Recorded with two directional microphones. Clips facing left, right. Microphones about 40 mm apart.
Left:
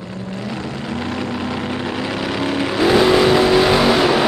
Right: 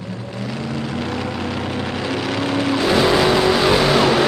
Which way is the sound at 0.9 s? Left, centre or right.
Centre.